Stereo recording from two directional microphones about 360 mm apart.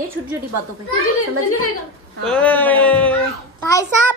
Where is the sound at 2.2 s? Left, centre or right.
Centre.